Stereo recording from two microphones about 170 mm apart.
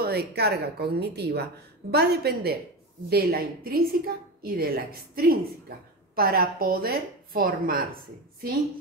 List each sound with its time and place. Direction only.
0.0 s a woman's voice: 70° right (ahead or behind)